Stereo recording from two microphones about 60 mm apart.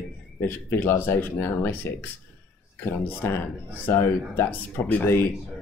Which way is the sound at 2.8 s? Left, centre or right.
Left.